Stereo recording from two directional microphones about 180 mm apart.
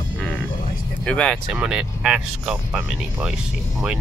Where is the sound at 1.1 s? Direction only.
5° left (ahead or behind).